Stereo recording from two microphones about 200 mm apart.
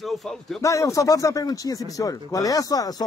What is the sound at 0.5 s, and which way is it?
Speech, 15° left (ahead or behind).